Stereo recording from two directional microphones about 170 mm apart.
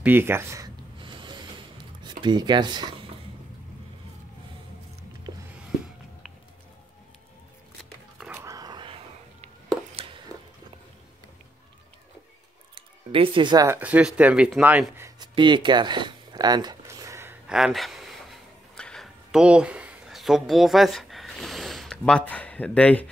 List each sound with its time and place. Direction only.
0.0 s speech: 10° right (ahead or behind)
0.9 s rub: 30° right (ahead or behind)
2.0 s speech: 25° right (ahead or behind)
8.4 s a sound: 20° right (ahead or behind)
12.7 s music: 30° right (ahead or behind)
13.7 s speech: 10° right (ahead or behind)
17.5 s a sound: 5° right (ahead or behind)